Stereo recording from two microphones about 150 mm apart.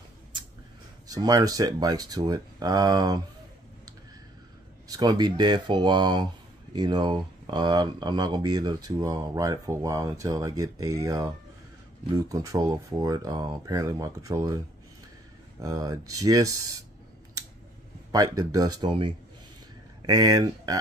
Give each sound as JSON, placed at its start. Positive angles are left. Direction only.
{"t": 1.0, "sound": "speech", "side_deg": -25}
{"t": 4.8, "sound": "speech", "side_deg": -25}
{"t": 15.6, "sound": "speech", "side_deg": -25}
{"t": 18.1, "sound": "speech", "side_deg": -25}